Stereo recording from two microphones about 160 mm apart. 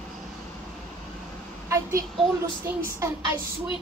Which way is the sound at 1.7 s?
20° right (ahead or behind).